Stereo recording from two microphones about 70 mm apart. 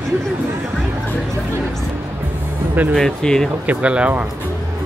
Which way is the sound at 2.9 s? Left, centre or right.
Centre.